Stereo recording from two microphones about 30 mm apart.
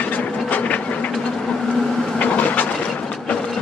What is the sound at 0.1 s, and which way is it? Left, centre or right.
Ratchet, left.